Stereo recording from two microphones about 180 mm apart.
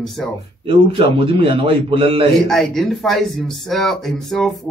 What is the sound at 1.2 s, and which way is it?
A man's voice, 30° right (ahead or behind).